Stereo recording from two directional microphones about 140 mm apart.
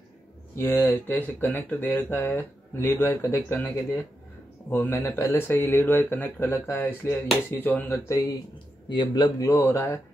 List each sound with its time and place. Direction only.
0.6 s speech: 20° left (ahead or behind)
8.8 s speech: 30° left (ahead or behind)